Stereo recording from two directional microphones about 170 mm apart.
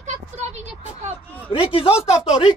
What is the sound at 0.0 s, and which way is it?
Vehicle, 40° right (ahead or behind).